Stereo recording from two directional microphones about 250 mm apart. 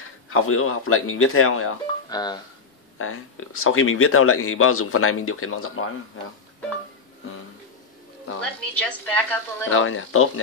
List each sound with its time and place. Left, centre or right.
0.3 s speech: left
2.0 s speech: centre
3.0 s speech: left
8.4 s a woman's voice: centre
9.7 s speech: left